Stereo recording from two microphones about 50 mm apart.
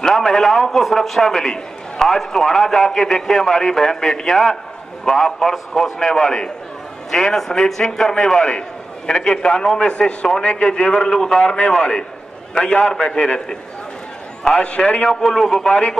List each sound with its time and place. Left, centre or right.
0.0 s a man's voice: centre; by 15.0 s left
15.0 s a man's voice: centre